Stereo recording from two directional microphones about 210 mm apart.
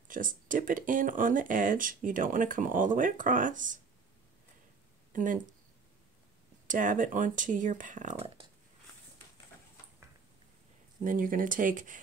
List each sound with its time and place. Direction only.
0.1 s speech: 40° right (ahead or behind)
5.1 s speech: 40° right (ahead or behind)
6.7 s speech: 40° right (ahead or behind)
11.0 s speech: 40° right (ahead or behind)